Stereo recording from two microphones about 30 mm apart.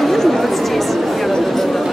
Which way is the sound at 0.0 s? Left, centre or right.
Centre.